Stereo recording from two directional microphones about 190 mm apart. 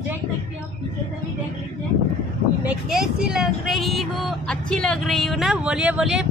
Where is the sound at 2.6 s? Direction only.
5° right (ahead or behind).